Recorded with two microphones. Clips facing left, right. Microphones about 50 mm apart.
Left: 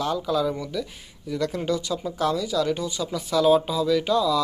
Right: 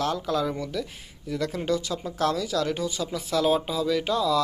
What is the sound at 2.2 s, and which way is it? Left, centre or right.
Speech, right.